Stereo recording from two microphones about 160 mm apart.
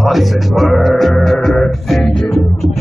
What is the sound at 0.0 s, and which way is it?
Music, centre (ahead or behind).